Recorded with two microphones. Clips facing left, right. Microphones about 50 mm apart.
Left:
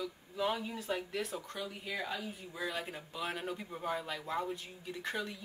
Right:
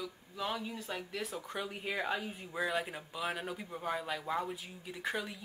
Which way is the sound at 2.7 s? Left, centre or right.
Centre.